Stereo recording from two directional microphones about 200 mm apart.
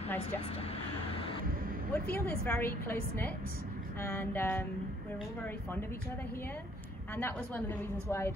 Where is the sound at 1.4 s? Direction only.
45° right (ahead or behind).